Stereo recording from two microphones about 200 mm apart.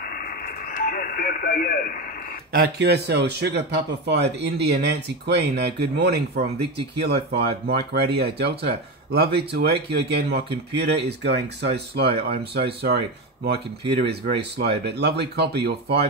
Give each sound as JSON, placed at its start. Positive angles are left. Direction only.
{"t": 0.0, "sound": "radio", "side_deg": 45}
{"t": 2.5, "sound": "speech", "side_deg": -55}